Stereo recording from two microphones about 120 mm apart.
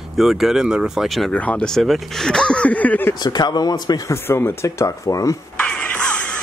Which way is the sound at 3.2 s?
35° left (ahead or behind).